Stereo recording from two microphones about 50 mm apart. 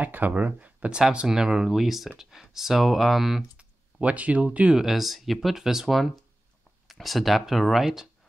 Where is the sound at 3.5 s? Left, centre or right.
Right.